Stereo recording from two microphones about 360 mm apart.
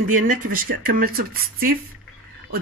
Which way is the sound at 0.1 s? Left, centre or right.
Right.